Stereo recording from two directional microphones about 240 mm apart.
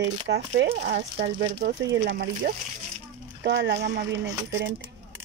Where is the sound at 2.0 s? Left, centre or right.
Right.